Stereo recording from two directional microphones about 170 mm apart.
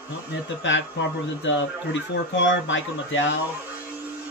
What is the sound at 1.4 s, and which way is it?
Speech, 90° left.